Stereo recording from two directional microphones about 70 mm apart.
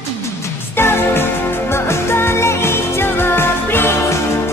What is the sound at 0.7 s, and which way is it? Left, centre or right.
Music, left.